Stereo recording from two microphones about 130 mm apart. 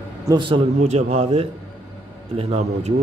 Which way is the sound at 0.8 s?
55° right (ahead or behind).